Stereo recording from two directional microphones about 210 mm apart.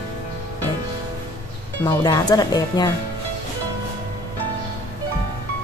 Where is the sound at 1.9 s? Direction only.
20° left (ahead or behind).